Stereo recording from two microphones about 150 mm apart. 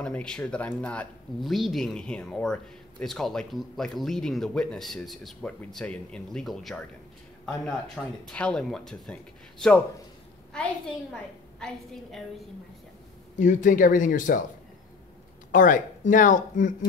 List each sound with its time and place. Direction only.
0.0 s speech: 5° left (ahead or behind)
11.6 s speech: 5° left (ahead or behind)
13.4 s speech: 60° left (ahead or behind)
15.5 s speech: 60° left (ahead or behind)